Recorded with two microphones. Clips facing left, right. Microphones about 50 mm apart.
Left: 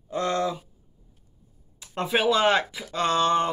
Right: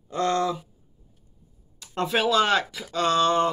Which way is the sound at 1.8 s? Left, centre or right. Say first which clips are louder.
Even; centre.